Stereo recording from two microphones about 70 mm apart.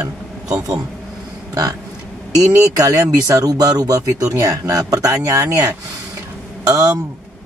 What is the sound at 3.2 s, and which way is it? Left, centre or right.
Speech, right.